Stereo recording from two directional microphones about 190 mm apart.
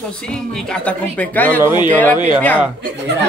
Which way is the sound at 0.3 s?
5° left (ahead or behind).